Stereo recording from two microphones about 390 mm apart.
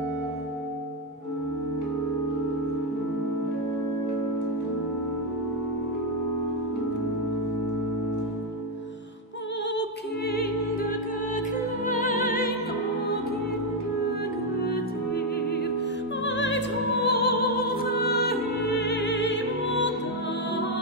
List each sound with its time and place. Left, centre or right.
9.8 s music: left
14.6 s music: left